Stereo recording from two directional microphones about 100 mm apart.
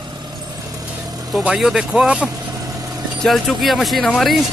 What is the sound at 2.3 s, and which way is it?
Vehicle, 35° right (ahead or behind).